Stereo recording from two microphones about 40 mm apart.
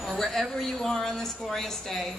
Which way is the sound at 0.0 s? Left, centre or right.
Centre.